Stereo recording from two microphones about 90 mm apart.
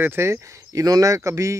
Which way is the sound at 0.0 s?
25° right (ahead or behind).